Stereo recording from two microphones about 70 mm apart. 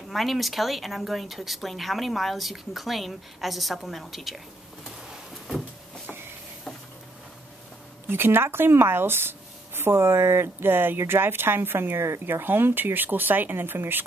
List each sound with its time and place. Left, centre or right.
0.1 s speech: centre
4.8 s a sound: centre
8.1 s speech: right